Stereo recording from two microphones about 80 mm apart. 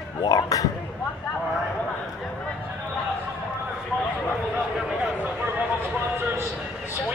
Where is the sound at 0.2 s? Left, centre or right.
Left.